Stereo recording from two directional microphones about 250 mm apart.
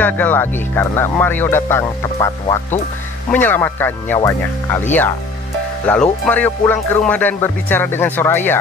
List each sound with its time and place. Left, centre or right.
0.0 s music: centre